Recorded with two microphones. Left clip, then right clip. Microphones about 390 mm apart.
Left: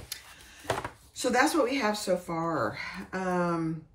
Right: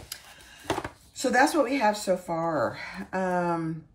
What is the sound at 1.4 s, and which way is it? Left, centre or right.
Speech, centre.